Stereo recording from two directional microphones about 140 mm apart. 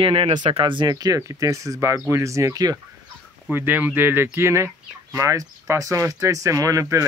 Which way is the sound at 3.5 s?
15° right (ahead or behind).